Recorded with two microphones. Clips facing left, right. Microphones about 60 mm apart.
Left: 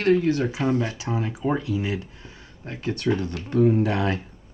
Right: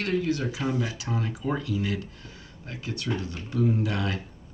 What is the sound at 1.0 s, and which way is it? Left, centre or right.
Speech, left.